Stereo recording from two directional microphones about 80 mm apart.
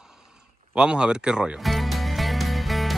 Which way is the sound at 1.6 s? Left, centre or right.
Centre.